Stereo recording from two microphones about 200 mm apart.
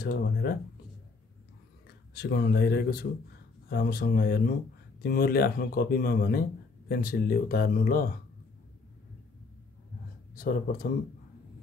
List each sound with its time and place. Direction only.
0.0 s speech: 50° left (ahead or behind)
2.1 s speech: 55° left (ahead or behind)
10.3 s speech: 45° left (ahead or behind)